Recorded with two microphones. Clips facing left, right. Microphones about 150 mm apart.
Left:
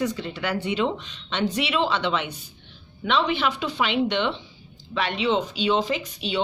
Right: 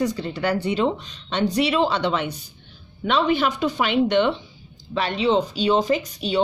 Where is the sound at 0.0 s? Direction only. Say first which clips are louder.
Right 4 dB; 40° right (ahead or behind).